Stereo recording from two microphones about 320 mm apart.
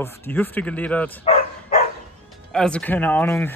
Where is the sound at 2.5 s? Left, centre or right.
Centre.